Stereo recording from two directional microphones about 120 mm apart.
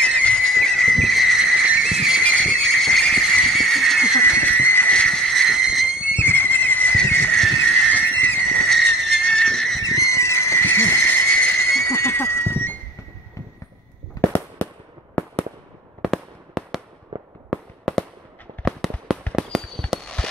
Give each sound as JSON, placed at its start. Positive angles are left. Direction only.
{"t": 0.0, "sound": "horse", "side_deg": 10}
{"t": 2.2, "sound": "vehicle", "side_deg": 5}
{"t": 4.4, "sound": "a sound", "side_deg": 15}
{"t": 6.1, "sound": "horse", "side_deg": 20}
{"t": 7.3, "sound": "horse", "side_deg": 0}
{"t": 7.9, "sound": "neigh", "side_deg": 15}
{"t": 8.6, "sound": "whistle", "side_deg": 5}
{"t": 9.8, "sound": "a sound", "side_deg": 25}
{"t": 11.8, "sound": "a sound", "side_deg": 20}
{"t": 14.6, "sound": "fireworks", "side_deg": 20}
{"t": 16.0, "sound": "fireworks", "side_deg": 0}
{"t": 17.1, "sound": "fireworks", "side_deg": -50}
{"t": 17.5, "sound": "fireworks", "side_deg": 0}